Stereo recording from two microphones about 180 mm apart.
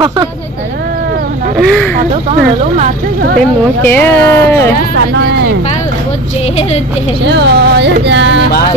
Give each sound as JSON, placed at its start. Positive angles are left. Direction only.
{"t": 1.6, "sound": "speech", "side_deg": 0}
{"t": 3.3, "sound": "speech", "side_deg": 10}
{"t": 4.9, "sound": "speech", "side_deg": -80}
{"t": 7.2, "sound": "speech", "side_deg": -70}